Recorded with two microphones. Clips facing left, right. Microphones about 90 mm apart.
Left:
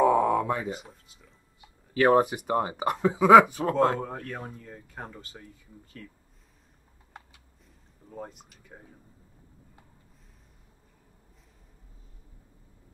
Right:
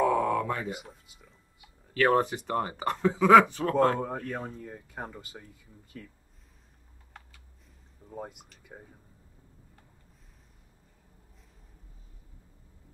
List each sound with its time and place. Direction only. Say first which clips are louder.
0.0 s a sound: left 4 dB; 20° left (ahead or behind)
2.0 s speech: left 3 dB; 15° left (ahead or behind)
4.0 s speech: right 2 dB; 5° right (ahead or behind)
8.1 s speech: even; 10° right (ahead or behind)